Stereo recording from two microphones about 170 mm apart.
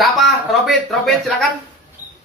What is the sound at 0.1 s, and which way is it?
Speech, centre (ahead or behind).